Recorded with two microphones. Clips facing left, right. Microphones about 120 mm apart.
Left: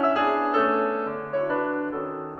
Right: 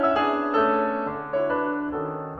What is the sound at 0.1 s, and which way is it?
Music, 15° right (ahead or behind).